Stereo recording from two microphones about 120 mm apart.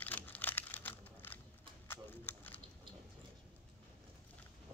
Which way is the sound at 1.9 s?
15° left (ahead or behind).